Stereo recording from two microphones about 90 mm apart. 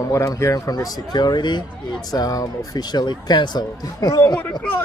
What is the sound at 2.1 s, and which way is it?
Speech, 45° left (ahead or behind).